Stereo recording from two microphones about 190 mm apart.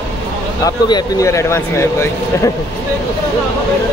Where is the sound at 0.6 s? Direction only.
20° left (ahead or behind).